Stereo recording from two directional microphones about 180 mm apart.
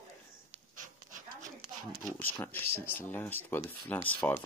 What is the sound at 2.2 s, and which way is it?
Speech, 10° left (ahead or behind).